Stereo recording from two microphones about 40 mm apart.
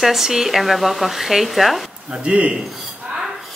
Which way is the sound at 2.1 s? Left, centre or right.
Right.